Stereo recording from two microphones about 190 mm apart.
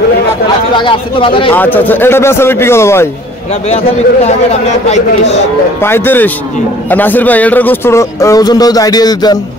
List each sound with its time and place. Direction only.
0.7 s speech: 25° left (ahead or behind)
1.5 s a man's voice: 10° left (ahead or behind)
3.6 s speech: 35° left (ahead or behind)
5.8 s a man's voice: 10° left (ahead or behind)